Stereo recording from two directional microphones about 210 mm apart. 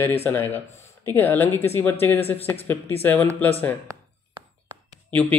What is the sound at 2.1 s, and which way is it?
Speech, 30° left (ahead or behind).